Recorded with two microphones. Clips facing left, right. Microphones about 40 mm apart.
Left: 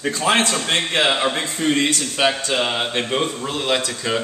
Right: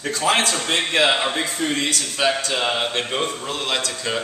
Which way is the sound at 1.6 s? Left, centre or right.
Centre.